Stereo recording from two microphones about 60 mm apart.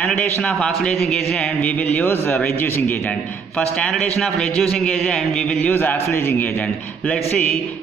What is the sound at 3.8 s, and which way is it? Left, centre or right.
Speech, centre.